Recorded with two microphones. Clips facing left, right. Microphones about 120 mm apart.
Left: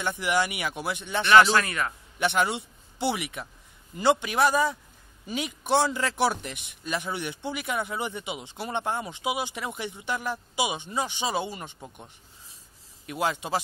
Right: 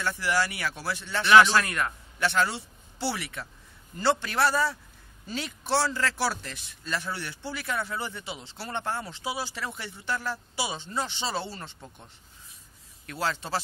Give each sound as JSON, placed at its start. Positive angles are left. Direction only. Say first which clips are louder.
{"t": 0.0, "sound": "speech", "louder": "left 1 dB", "side_deg": 20}
{"t": 1.3, "sound": "speech", "louder": "even", "side_deg": 0}
{"t": 2.1, "sound": "a man's voice", "louder": "left 1 dB", "side_deg": 20}